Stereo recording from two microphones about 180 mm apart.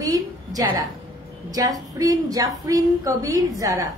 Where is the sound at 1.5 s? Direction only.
20° right (ahead or behind).